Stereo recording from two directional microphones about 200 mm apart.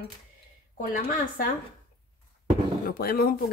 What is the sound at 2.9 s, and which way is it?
Speech, 50° left (ahead or behind).